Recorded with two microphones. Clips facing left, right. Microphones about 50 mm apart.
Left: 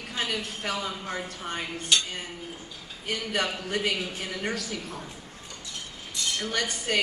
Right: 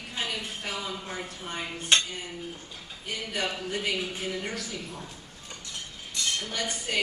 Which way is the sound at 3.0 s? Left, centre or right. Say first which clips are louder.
Left 3 dB; left.